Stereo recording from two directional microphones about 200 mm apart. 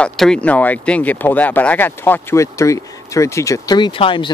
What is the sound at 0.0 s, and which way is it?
Speech, 5° left (ahead or behind).